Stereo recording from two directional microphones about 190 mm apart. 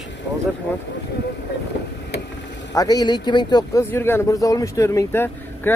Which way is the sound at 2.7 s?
20° left (ahead or behind).